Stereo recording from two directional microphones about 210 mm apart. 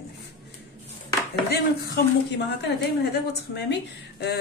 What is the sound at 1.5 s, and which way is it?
Speech, 50° left (ahead or behind).